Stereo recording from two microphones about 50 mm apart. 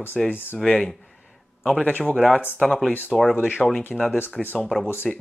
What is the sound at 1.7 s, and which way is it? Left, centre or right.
Speech, left.